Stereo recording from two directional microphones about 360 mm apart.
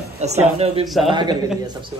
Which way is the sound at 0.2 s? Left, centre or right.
Centre.